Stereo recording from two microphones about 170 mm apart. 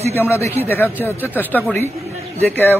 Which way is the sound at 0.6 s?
10° left (ahead or behind).